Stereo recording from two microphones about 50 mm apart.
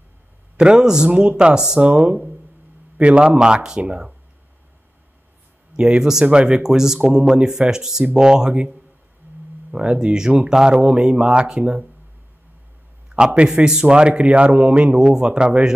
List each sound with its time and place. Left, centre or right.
0.6 s speech: centre
3.0 s speech: right
5.8 s speech: centre
13.1 s a man's voice: right